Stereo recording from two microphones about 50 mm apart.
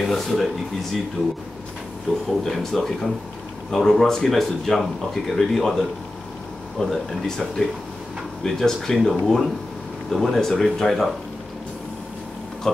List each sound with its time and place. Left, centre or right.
0.0 s speech: centre
2.4 s speech: centre
12.7 s speech: centre